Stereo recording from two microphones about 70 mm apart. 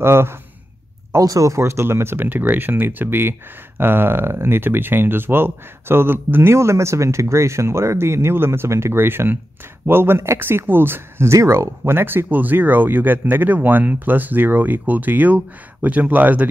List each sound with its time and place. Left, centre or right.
0.0 s speech: right
1.1 s speech: right
11.3 s speech: right